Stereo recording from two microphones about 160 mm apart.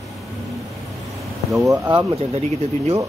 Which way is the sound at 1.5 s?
20° right (ahead or behind).